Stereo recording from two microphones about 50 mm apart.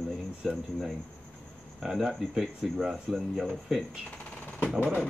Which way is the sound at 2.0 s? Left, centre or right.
Centre.